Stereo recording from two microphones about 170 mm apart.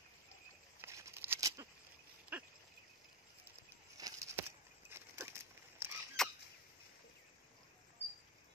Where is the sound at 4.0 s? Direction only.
15° right (ahead or behind).